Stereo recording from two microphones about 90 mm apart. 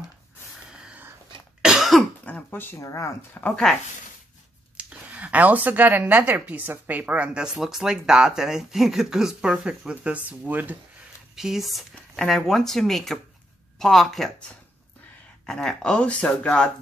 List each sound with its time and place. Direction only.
0.7 s a sound: 10° right (ahead or behind)
1.6 s cough: 5° right (ahead or behind)
2.2 s a sound: 20° left (ahead or behind)
2.8 s speech: 35° left (ahead or behind)
3.7 s speech: 5° left (ahead or behind)
4.7 s speech: 15° right (ahead or behind)
11.3 s speech: 5° right (ahead or behind)
15.4 s speech: 5° left (ahead or behind)